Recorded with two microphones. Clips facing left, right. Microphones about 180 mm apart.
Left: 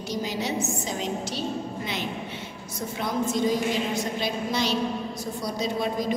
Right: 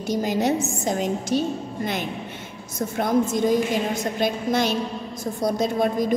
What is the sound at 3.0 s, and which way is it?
A woman's voice, 50° right (ahead or behind).